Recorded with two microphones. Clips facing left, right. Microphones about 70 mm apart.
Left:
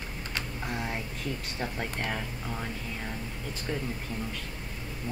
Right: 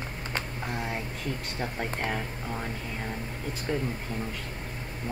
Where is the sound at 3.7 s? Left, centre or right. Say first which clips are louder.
Right 4 dB; centre.